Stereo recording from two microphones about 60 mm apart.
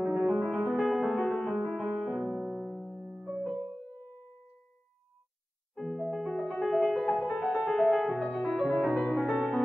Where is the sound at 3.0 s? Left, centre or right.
Centre.